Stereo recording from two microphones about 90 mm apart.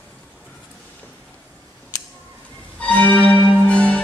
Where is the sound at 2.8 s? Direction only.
15° left (ahead or behind).